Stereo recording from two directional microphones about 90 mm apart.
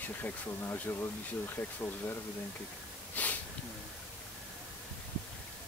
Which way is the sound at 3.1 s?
20° left (ahead or behind).